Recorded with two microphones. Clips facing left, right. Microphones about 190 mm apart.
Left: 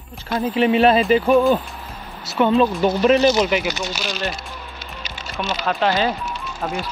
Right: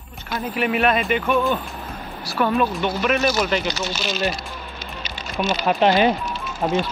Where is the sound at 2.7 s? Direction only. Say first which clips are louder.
Left 6 dB; 35° left (ahead or behind).